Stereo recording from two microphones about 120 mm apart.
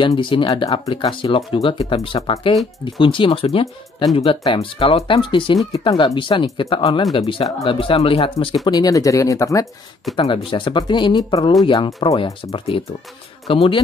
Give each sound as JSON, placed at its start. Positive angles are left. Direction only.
{"t": 0.0, "sound": "speech", "side_deg": 45}
{"t": 8.6, "sound": "speech", "side_deg": 30}
{"t": 10.1, "sound": "speech", "side_deg": 45}